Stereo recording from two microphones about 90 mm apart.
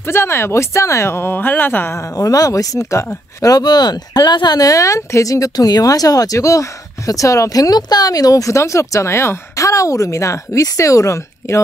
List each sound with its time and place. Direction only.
0.0 s speech: 25° left (ahead or behind)